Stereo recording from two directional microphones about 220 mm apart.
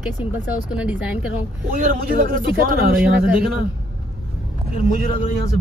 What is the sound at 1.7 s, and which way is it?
Speech, 40° right (ahead or behind).